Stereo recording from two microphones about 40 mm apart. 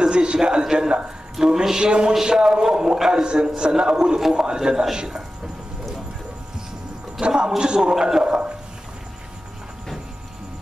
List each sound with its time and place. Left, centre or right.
0.0 s a man's voice: right
7.2 s a man's voice: right